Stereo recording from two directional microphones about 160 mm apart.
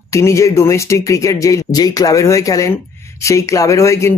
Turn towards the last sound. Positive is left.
turn(degrees=15)  # may be behind; listen again after turning